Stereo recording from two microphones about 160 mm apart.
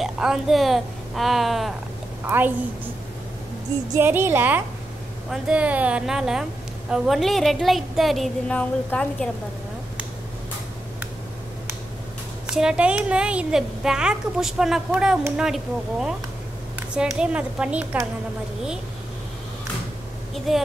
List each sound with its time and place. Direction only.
0.0 s a woman's voice: centre (ahead or behind)
2.2 s a woman's voice: 10° right (ahead or behind)
4.0 s a woman's voice: 15° right (ahead or behind); by 9.3 s 5° left (ahead or behind)
12.4 s a woman's voice: 5° right (ahead or behind)
20.3 s a woman's voice: centre (ahead or behind)